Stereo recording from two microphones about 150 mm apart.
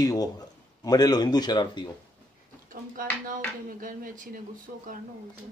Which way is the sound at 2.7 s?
65° right (ahead or behind).